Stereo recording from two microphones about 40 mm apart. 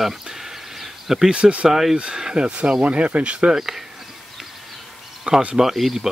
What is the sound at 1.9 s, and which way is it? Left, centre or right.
Speech, centre.